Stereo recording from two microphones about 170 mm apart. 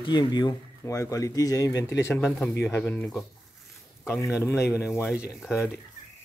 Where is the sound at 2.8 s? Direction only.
5° left (ahead or behind).